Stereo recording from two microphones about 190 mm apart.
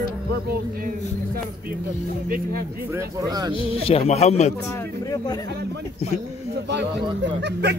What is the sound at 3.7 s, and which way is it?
Speech, 30° left (ahead or behind).